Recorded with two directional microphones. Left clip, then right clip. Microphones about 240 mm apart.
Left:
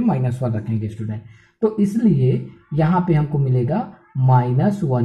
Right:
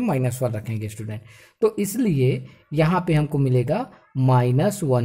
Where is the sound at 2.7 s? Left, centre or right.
Right.